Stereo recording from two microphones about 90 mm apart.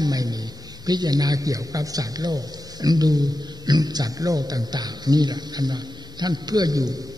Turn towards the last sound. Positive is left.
turn(degrees=-45)  # may be behind; listen again after turning